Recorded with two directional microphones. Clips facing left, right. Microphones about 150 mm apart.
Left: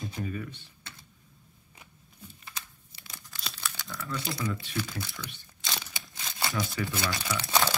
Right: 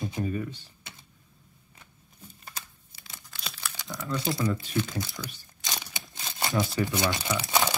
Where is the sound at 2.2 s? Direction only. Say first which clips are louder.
Right 1 dB; 45° right (ahead or behind).